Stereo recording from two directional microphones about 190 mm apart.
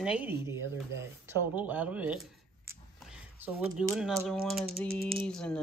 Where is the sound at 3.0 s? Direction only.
5° right (ahead or behind).